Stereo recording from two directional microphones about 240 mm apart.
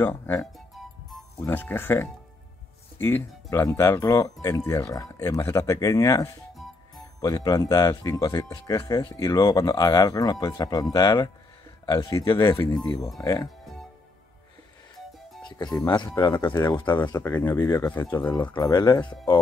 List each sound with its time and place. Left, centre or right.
0.0 s music: centre
3.0 s speech: centre
15.4 s speech: centre